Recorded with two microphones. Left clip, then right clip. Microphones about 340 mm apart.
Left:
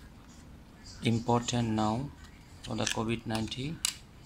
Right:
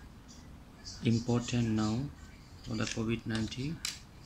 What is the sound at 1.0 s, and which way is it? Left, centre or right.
Speech, centre.